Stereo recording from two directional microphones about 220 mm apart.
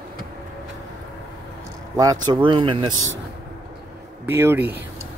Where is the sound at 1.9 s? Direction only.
15° right (ahead or behind).